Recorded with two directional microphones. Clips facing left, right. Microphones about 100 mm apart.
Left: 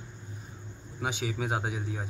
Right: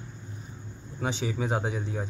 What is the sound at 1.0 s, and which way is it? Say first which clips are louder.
A man's voice: right 2 dB; 10° left (ahead or behind).